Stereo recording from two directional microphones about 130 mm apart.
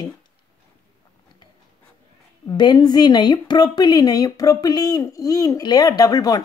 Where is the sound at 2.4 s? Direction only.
35° left (ahead or behind).